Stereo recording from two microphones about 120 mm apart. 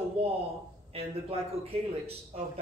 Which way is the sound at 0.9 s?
55° right (ahead or behind).